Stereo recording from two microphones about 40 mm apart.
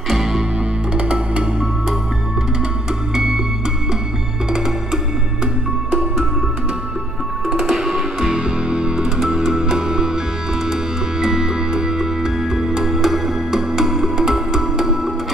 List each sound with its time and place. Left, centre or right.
0.1 s music: centre
0.9 s music: right
7.4 s music: centre